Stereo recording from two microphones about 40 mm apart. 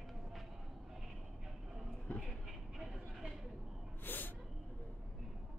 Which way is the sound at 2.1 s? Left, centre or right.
Left.